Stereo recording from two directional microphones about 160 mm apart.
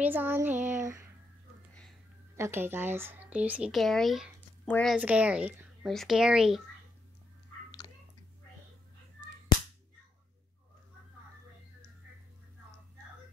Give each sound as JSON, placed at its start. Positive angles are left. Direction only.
{"t": 0.0, "sound": "a sound", "side_deg": -10}
{"t": 0.6, "sound": "speech", "side_deg": -50}
{"t": 2.3, "sound": "speech", "side_deg": -15}
{"t": 9.5, "sound": "whip", "side_deg": 25}